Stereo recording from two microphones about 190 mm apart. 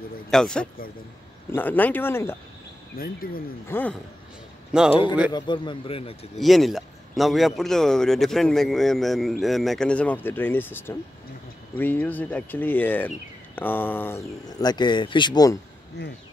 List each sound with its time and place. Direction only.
0.3 s a man's voice: 5° left (ahead or behind)
3.0 s speech: 50° left (ahead or behind)
3.6 s speech: 10° left (ahead or behind)
4.7 s a man's voice: 5° right (ahead or behind)
5.3 s speech: 25° left (ahead or behind)
6.3 s a man's voice: centre (ahead or behind)
14.6 s speech: 20° left (ahead or behind)